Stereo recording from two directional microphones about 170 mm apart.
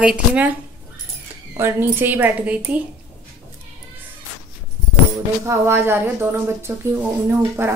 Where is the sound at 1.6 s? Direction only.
15° right (ahead or behind).